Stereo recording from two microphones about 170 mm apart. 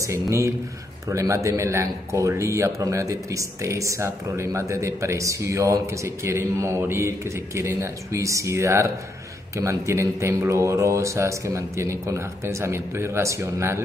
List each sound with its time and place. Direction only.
0.0 s speech: 15° right (ahead or behind)